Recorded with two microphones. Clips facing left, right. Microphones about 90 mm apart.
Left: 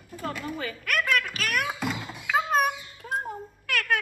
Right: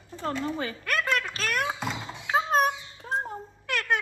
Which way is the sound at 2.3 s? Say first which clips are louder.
Even; 25° right (ahead or behind).